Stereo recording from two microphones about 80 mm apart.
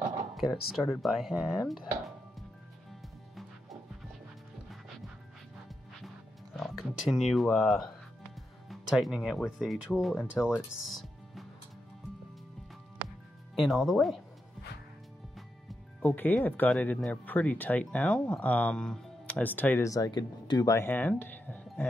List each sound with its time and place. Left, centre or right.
0.4 s speech: centre
6.5 s speech: centre
10.0 s speech: centre
10.9 s music: centre
13.6 s speech: centre
16.0 s speech: left
19.4 s speech: left
19.8 s speech: left
20.1 s speech: left
20.8 s speech: left